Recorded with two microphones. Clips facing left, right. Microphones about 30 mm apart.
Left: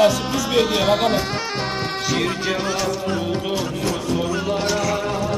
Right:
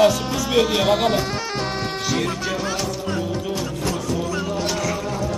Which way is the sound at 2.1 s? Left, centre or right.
Centre.